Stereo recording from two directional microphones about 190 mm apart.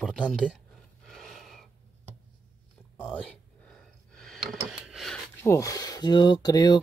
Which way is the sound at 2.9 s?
5° left (ahead or behind).